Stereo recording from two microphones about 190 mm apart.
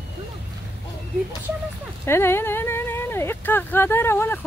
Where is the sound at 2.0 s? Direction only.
15° left (ahead or behind).